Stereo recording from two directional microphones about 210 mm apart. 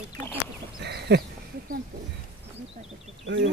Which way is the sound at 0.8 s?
50° right (ahead or behind).